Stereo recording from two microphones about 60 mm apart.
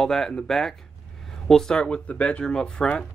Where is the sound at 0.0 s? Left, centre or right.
Centre.